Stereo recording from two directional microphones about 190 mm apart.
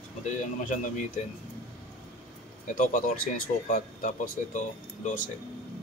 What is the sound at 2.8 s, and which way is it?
Speech, 45° left (ahead or behind).